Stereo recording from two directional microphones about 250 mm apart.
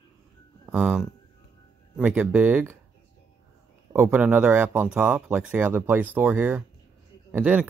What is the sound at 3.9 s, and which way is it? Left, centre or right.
Speech, centre.